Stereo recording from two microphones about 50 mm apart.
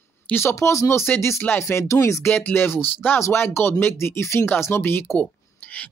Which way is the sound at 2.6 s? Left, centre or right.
Left.